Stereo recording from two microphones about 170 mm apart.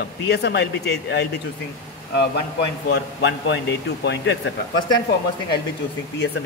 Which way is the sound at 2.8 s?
90° left.